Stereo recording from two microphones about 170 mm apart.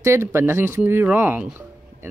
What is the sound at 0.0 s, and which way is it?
Speech, 15° right (ahead or behind).